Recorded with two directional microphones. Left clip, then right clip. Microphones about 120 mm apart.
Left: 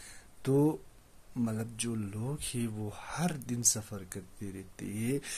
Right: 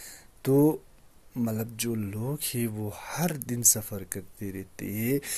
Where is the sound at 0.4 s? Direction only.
40° right (ahead or behind).